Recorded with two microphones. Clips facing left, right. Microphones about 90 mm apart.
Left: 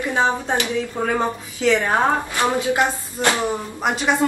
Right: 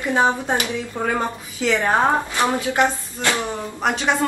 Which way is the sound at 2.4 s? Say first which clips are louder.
Left 1 dB; 20° left (ahead or behind).